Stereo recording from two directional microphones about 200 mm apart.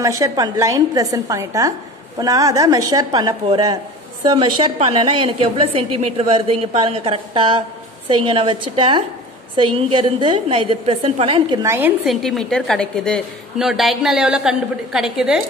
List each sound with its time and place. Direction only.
0.2 s a woman's voice: 15° right (ahead or behind)
11.6 s a woman's voice: 15° right (ahead or behind)
12.0 s a woman's voice: centre (ahead or behind)